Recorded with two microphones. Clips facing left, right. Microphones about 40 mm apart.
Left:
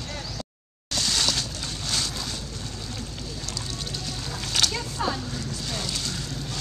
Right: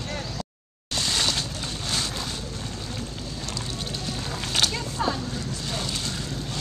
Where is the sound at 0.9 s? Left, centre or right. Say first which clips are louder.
Even; centre.